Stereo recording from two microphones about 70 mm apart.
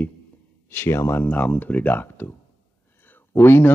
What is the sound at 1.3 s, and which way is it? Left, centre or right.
Speech, left.